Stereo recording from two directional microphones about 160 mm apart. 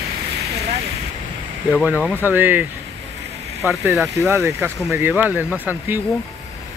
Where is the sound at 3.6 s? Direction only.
5° right (ahead or behind).